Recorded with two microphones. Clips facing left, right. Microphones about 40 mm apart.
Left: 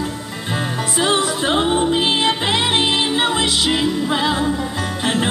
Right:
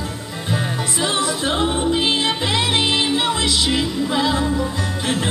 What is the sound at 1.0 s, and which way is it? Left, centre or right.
Music, left.